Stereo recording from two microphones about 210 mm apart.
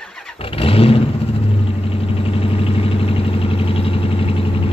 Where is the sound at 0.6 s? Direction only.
25° left (ahead or behind).